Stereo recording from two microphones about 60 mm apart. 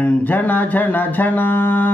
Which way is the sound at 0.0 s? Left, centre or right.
Left.